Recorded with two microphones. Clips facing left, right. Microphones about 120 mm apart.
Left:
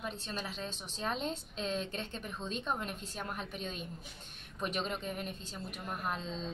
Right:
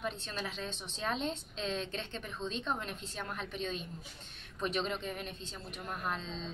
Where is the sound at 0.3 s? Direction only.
5° left (ahead or behind).